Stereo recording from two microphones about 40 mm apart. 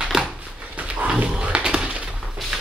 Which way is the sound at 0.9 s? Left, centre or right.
Right.